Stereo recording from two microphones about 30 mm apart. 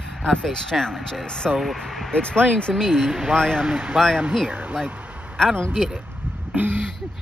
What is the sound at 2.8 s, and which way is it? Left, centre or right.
Speech, centre.